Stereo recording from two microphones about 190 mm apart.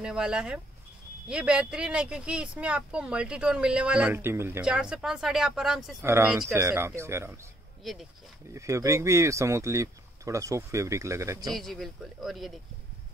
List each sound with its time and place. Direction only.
0.0 s speech: 5° right (ahead or behind)
6.0 s speech: 15° right (ahead or behind)
7.8 s speech: centre (ahead or behind)
8.5 s speech: 15° right (ahead or behind)
11.4 s speech: centre (ahead or behind)